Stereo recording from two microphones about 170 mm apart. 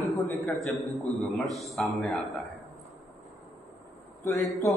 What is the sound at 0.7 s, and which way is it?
A man's voice, centre (ahead or behind).